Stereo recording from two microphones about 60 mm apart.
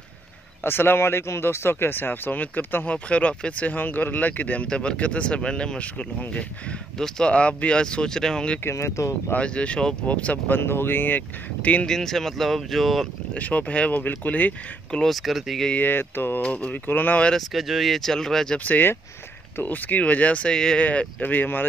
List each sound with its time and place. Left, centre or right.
0.7 s speech: left; by 8.5 s centre
8.6 s speech: left
9.4 s speech: centre
10.5 s speech: left
11.9 s speech: centre
13.3 s speech: left
15.0 s speech: centre
15.7 s speech: left
16.4 s speech: left
17.4 s speech: centre
18.6 s speech: left
20.5 s speech: centre
20.8 s speech: left